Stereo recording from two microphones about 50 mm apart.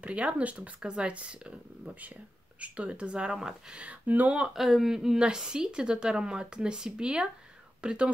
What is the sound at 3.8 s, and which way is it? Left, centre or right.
Speech, right.